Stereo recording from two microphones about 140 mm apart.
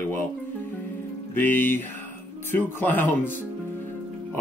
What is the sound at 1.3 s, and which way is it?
A man's voice, 15° left (ahead or behind).